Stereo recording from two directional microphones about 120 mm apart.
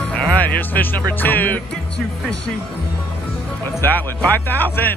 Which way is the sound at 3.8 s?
15° left (ahead or behind).